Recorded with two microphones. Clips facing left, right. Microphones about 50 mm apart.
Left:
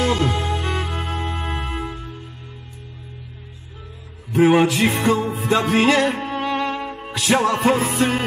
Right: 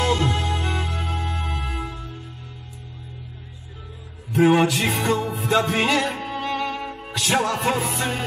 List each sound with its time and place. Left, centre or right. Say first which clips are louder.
0.0 s music: left 2 dB; centre
4.4 s music: left 2 dB; centre